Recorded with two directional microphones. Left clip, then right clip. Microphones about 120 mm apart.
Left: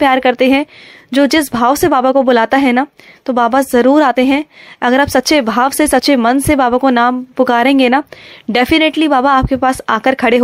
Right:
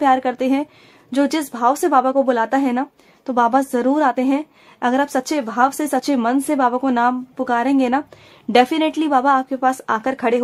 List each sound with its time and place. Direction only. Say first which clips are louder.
0.0 s speech: left 6 dB; 40° left (ahead or behind)
8.5 s speech: left 4 dB; 30° left (ahead or behind)